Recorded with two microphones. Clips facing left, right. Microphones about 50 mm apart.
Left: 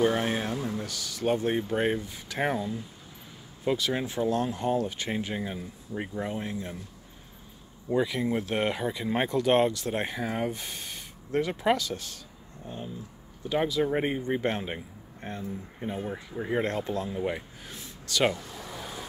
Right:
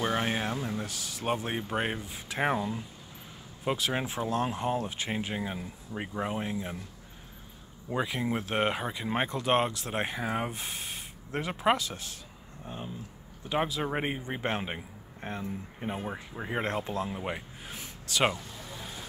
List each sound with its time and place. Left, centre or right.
0.0 s speech: centre
5.6 s speech: centre
8.3 s speech: centre
18.8 s vehicle: centre